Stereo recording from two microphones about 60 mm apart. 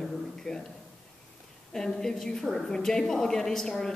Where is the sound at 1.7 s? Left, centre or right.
Centre.